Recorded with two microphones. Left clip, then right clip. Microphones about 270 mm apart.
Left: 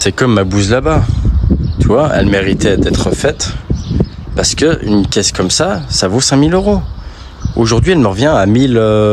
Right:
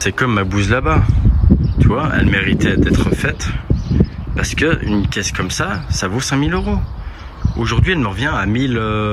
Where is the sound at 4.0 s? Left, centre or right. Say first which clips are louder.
Left 2 dB; centre.